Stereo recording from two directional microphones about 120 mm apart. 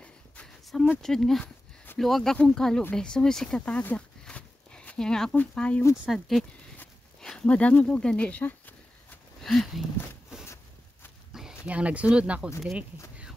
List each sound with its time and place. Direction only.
0.0 s a sound: 5° left (ahead or behind)
1.0 s speech: 5° left (ahead or behind)
6.0 s speech: centre (ahead or behind)
9.4 s speech: centre (ahead or behind)
10.4 s a sound: 20° left (ahead or behind)
11.3 s speech: 10° right (ahead or behind)